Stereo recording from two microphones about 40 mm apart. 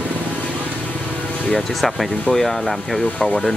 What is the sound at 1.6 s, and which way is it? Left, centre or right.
Speech, centre.